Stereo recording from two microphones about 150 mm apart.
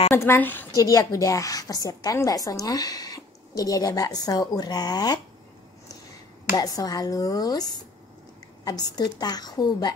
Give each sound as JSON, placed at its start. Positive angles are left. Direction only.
{"t": 0.1, "sound": "a woman's voice", "side_deg": 15}
{"t": 0.7, "sound": "a woman's voice", "side_deg": 25}
{"t": 6.5, "sound": "a woman's voice", "side_deg": 25}